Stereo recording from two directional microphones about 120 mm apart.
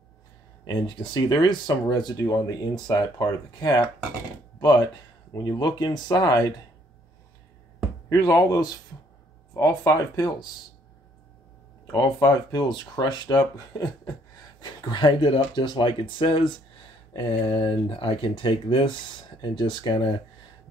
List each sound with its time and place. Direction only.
0.7 s speech: 40° left (ahead or behind)
8.1 s speech: 30° left (ahead or behind)
11.8 s speech: 30° left (ahead or behind)